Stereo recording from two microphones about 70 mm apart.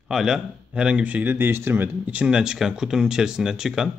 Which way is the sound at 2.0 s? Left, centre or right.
Centre.